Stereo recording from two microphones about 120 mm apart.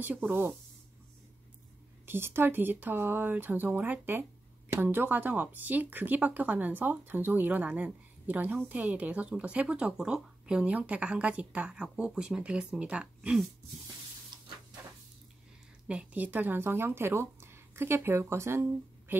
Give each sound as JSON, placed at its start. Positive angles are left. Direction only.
{"t": 0.0, "sound": "speech", "side_deg": -15}
{"t": 2.0, "sound": "speech", "side_deg": -20}
{"t": 14.3, "sound": "a sound", "side_deg": -40}
{"t": 15.9, "sound": "speech", "side_deg": -10}